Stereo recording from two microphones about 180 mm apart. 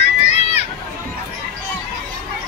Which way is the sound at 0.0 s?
40° left (ahead or behind).